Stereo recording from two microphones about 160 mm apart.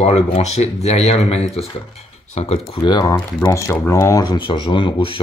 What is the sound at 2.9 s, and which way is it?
Speech, 25° left (ahead or behind).